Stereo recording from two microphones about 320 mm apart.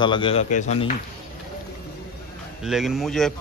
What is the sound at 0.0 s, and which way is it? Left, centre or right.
Speech, centre.